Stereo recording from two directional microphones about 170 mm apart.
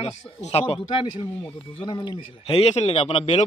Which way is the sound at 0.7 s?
30° left (ahead or behind).